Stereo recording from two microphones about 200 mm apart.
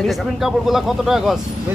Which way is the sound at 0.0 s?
Centre (ahead or behind).